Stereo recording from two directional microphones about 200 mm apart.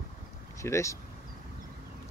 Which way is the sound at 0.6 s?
15° left (ahead or behind).